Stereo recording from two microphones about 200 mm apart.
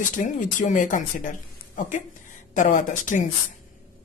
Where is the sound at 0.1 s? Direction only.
40° left (ahead or behind).